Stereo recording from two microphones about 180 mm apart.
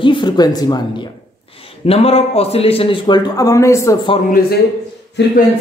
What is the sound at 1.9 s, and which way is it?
Speech, 35° left (ahead or behind).